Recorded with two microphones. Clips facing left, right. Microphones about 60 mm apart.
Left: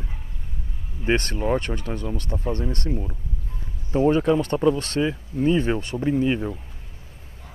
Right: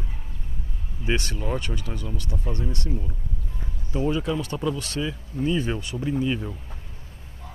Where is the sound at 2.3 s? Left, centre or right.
Left.